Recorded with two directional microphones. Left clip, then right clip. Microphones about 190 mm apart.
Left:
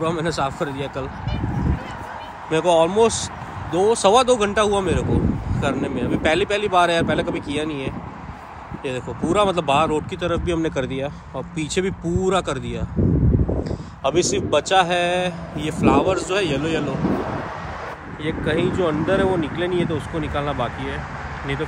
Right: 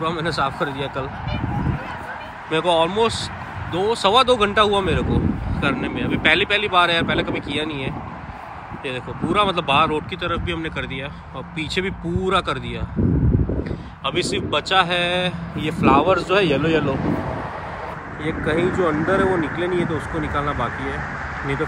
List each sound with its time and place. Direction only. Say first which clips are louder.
0.0 s speech: even; 15° left (ahead or behind)
2.5 s speech: left 2 dB; 15° left (ahead or behind)
13.7 s speech: left 3 dB; 20° left (ahead or behind); by 16.9 s 5° left (ahead or behind)
18.2 s speech: right 1 dB; centre (ahead or behind)